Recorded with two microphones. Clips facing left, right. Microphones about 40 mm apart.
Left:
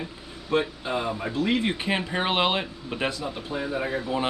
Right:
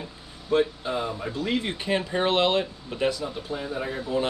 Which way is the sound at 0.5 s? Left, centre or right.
Centre.